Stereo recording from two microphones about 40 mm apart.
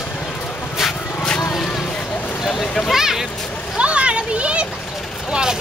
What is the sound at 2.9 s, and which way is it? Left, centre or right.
Speech, centre.